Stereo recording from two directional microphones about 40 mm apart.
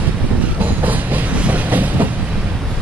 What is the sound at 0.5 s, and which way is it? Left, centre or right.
Train, right.